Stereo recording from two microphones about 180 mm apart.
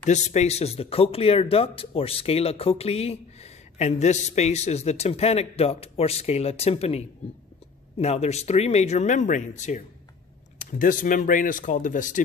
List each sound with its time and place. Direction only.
0.0 s speech: 40° left (ahead or behind)